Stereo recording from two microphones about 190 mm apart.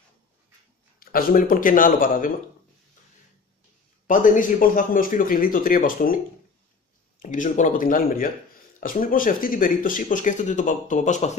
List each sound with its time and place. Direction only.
0.9 s speech: 50° left (ahead or behind)
4.1 s speech: 45° left (ahead or behind)